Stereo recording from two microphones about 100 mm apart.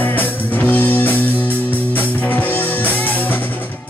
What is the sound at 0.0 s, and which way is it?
Music, 15° left (ahead or behind).